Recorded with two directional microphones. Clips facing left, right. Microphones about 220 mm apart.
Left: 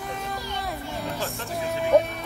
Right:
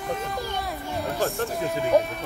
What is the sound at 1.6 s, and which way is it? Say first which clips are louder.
Speech: left 2 dB; centre (ahead or behind).